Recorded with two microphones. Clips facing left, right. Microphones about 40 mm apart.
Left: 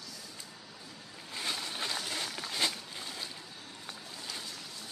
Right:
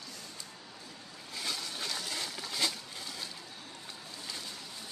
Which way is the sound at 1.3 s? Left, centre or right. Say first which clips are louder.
Left 1 dB; left.